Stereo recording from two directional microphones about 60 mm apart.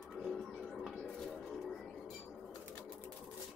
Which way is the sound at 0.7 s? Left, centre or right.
Centre.